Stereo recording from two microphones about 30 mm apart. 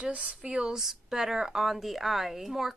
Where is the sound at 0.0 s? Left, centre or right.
Right.